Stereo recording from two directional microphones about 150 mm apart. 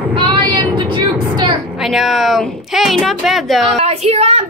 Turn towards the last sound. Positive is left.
turn(degrees=-45)  # may be behind; listen again after turning